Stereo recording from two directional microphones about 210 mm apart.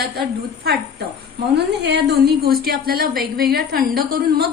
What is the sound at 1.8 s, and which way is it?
A woman's voice, 55° right (ahead or behind).